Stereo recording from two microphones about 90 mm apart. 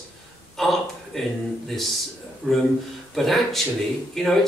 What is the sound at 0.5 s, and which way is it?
Speech, centre (ahead or behind).